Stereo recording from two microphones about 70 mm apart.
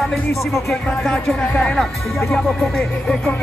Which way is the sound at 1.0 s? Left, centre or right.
Centre.